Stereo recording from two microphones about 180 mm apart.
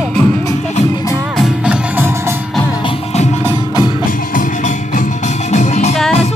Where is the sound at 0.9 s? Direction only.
20° left (ahead or behind).